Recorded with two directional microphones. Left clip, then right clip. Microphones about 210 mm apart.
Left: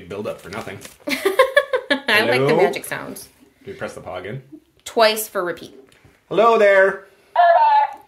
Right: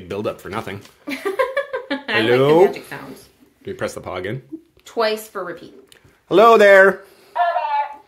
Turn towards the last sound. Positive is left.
turn(degrees=5)  # may be behind; listen again after turning